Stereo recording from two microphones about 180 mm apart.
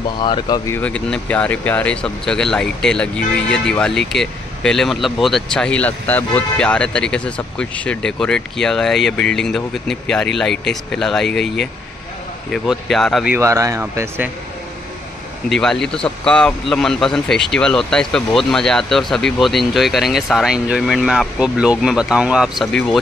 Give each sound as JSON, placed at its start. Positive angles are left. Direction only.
{"t": 0.2, "sound": "speech", "side_deg": 25}
{"t": 0.7, "sound": "speech", "side_deg": 5}
{"t": 13.4, "sound": "speech", "side_deg": -15}
{"t": 15.5, "sound": "speech", "side_deg": 5}